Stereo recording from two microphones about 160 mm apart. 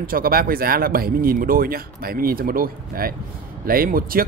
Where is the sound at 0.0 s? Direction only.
65° right (ahead or behind).